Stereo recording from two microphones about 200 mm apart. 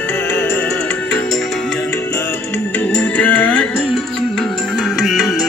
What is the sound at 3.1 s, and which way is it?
Music, 5° left (ahead or behind).